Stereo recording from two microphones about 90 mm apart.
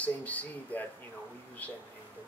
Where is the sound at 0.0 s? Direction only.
15° left (ahead or behind).